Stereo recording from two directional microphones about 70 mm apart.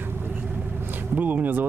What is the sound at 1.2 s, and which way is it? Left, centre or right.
Speech, right.